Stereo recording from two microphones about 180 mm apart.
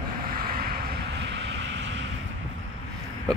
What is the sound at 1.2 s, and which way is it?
Vehicle, 75° right (ahead or behind).